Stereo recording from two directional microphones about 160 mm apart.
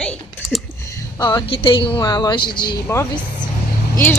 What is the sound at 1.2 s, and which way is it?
A woman's voice, 30° left (ahead or behind).